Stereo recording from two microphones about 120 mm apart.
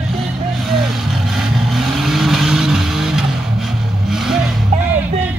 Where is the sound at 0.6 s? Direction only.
Centre (ahead or behind).